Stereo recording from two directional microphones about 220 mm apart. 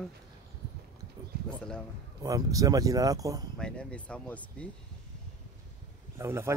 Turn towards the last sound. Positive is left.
turn(degrees=-10)  # may be behind; listen again after turning